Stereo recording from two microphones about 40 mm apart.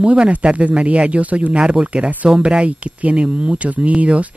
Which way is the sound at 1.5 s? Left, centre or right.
Right.